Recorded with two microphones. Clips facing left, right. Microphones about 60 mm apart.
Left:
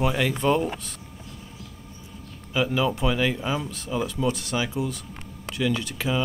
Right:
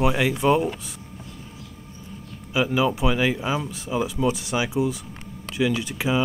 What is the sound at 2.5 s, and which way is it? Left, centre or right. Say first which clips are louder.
Speech: right 2 dB; centre.